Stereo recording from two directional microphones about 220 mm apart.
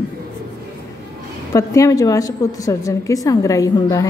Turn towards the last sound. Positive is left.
turn(degrees=15)  # may be behind; listen again after turning